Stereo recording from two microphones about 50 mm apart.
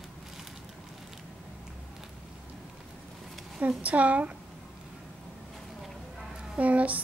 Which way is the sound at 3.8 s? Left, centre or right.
Right.